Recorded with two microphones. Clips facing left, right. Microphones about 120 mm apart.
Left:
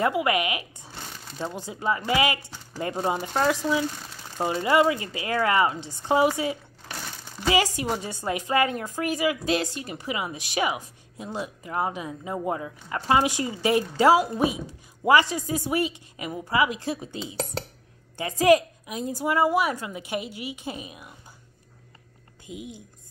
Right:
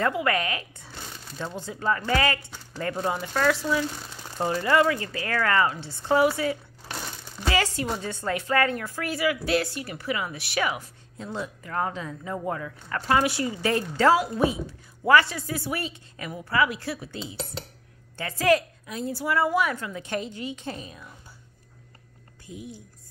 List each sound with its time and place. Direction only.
0.0 s a woman's voice: 15° left (ahead or behind)
8.1 s a woman's voice: 15° left (ahead or behind)
22.5 s a woman's voice: 15° left (ahead or behind)